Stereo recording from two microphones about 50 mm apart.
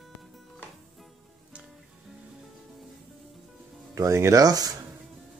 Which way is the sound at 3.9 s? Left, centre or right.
Right.